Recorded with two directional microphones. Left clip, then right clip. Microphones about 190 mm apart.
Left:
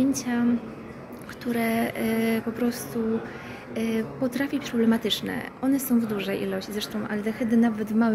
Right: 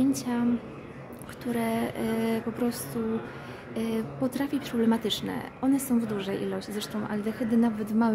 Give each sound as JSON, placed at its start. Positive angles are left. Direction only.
{"t": 0.0, "sound": "a woman's voice", "side_deg": -20}